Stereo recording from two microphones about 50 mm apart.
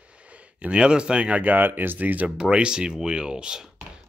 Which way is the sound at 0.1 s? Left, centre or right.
Right.